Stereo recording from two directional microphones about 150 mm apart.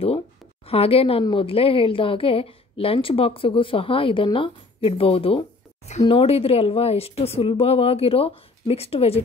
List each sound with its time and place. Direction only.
0.7 s a woman's voice: 40° left (ahead or behind)